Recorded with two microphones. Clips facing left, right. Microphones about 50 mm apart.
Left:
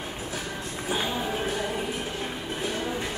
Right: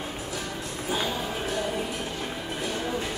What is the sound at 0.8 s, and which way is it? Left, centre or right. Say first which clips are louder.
Music: even; centre.